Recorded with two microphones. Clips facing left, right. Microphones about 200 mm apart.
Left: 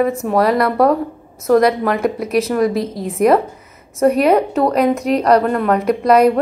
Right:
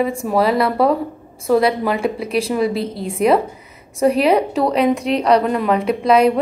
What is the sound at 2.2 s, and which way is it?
Speech, 30° right (ahead or behind).